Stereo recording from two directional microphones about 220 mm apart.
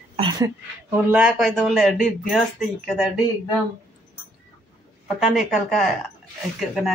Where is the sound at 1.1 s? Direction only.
5° right (ahead or behind).